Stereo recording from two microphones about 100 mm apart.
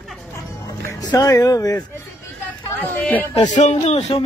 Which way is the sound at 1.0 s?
40° left (ahead or behind).